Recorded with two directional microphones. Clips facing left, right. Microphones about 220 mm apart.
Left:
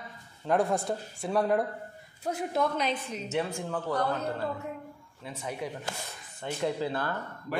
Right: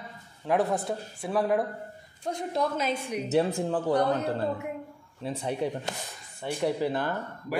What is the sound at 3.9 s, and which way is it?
Speech, 15° right (ahead or behind).